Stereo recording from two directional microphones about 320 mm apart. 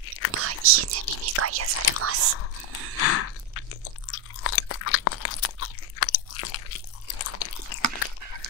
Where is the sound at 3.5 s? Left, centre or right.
Left.